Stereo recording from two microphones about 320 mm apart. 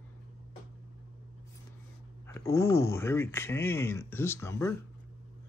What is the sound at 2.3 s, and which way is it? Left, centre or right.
Speech, centre.